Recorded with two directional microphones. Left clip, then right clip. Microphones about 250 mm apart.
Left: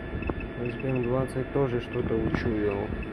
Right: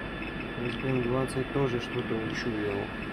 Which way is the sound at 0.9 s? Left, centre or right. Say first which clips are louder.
Left 2 dB; centre.